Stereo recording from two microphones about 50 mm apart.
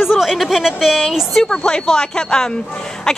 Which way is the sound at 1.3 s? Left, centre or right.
Centre.